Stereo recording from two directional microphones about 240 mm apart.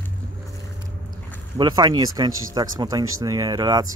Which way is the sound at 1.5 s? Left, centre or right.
Centre.